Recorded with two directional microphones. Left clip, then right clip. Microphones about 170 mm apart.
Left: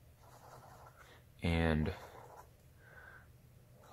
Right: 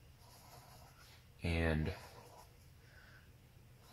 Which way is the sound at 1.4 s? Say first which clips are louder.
Left 3 dB; 15° left (ahead or behind).